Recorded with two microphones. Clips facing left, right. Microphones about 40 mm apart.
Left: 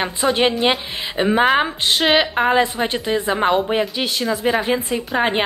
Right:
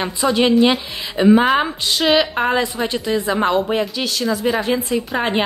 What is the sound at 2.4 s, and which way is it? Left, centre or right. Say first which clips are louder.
Speech: left 2 dB; centre.